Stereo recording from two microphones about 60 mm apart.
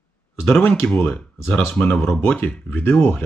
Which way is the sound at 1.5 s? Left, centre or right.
Left.